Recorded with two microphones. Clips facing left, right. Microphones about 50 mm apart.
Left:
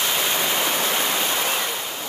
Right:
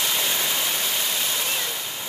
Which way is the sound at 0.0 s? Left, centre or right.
Left.